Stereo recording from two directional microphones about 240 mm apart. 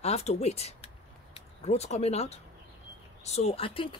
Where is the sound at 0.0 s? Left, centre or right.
Left.